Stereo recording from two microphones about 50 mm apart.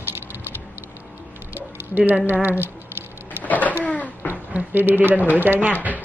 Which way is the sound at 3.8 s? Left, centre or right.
Left.